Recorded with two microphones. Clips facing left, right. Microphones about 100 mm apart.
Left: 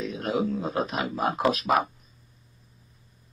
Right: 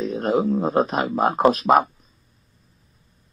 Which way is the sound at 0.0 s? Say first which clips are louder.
Right 6 dB; 40° right (ahead or behind).